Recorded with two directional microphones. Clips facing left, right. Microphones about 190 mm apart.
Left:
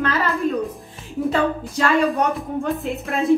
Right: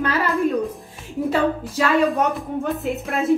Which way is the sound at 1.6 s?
5° right (ahead or behind).